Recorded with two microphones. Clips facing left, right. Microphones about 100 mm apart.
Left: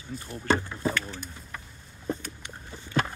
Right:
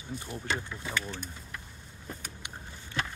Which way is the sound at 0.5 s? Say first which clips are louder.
Left 10 dB; 40° left (ahead or behind).